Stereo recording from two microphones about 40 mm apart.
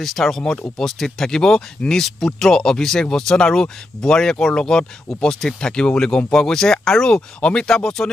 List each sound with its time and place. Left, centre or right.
0.0 s speech: centre